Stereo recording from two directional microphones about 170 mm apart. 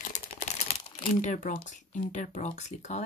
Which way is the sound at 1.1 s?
50° left (ahead or behind).